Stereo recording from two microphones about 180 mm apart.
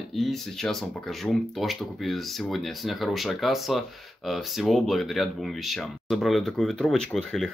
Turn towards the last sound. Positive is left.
turn(degrees=0)  # may be behind; listen again after turning